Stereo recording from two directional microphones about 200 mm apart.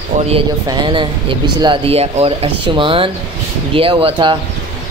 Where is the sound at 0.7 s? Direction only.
20° right (ahead or behind).